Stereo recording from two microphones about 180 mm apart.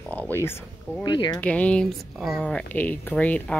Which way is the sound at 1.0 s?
25° left (ahead or behind).